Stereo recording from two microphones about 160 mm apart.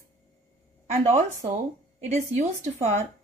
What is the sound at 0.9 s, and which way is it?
A woman's voice, 45° right (ahead or behind).